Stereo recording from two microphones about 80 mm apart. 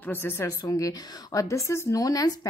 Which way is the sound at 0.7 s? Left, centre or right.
Left.